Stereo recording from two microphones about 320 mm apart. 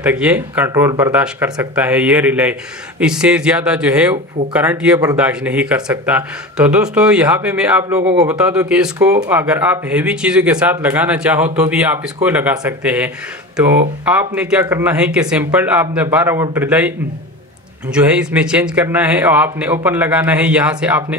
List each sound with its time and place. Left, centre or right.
0.0 s speech: centre
8.0 s a man's voice: centre
8.3 s speech: centre
17.9 s speech: centre